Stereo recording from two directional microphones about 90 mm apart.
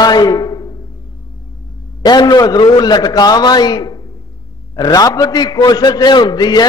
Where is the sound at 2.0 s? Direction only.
50° left (ahead or behind).